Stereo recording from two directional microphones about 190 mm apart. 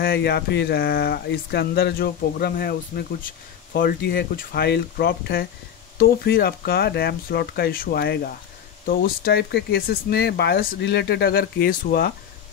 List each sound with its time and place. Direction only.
0.0 s speech: 55° left (ahead or behind)